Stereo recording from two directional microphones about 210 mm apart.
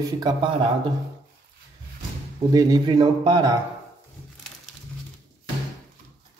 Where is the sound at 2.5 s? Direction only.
20° right (ahead or behind).